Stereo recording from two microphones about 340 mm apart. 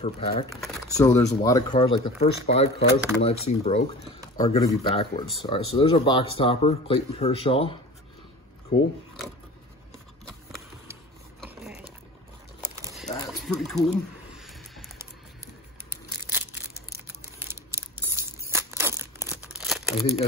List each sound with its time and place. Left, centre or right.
0.0 s speech: centre
0.5 s speech: centre
4.4 s speech: centre
8.7 s speech: left
10.2 s clip-clop: centre
12.7 s a sound: centre
17.5 s tearing: centre